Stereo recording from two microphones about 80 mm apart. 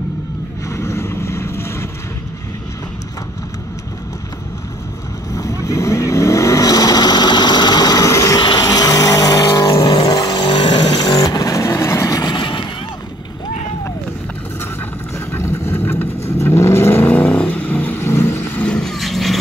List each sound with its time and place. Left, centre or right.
0.7 s vehicle: left
5.3 s vehicle: left
8.4 s vehicle: left
9.8 s vehicle: left
10.1 s vehicle: left
10.4 s vehicle: left
12.3 s a sound: left
15.1 s vehicle: left
17.1 s vehicle: centre
18.7 s vehicle: centre